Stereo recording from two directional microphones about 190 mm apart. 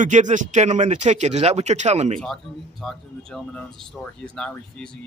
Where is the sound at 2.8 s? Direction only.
Centre (ahead or behind).